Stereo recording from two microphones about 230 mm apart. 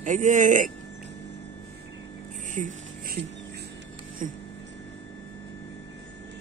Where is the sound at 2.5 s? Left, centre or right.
Right.